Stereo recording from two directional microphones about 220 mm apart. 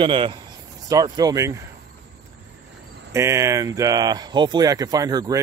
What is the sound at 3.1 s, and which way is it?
Speech, 15° right (ahead or behind).